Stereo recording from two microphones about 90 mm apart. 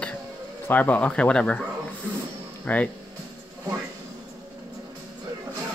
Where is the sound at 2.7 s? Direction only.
20° left (ahead or behind).